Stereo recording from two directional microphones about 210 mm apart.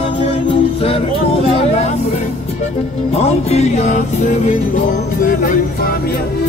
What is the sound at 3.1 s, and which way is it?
Music, 30° left (ahead or behind).